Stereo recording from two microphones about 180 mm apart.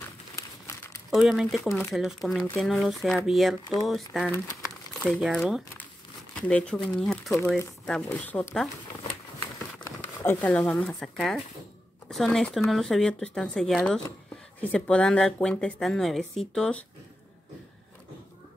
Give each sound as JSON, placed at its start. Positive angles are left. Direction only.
{"t": 0.4, "sound": "crumpling", "side_deg": 15}
{"t": 1.1, "sound": "speech", "side_deg": 0}
{"t": 9.8, "sound": "speech", "side_deg": 10}